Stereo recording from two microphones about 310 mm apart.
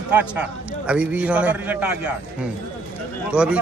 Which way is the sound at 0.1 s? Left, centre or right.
Centre.